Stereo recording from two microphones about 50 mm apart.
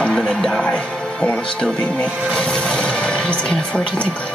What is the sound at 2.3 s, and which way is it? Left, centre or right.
Music, centre.